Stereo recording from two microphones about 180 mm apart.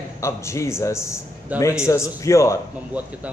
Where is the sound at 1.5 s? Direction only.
10° right (ahead or behind).